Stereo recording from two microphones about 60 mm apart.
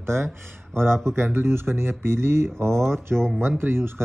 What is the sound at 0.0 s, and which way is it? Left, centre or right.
Speech, right.